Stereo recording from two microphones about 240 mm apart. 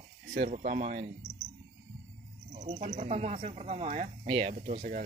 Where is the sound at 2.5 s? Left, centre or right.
Right.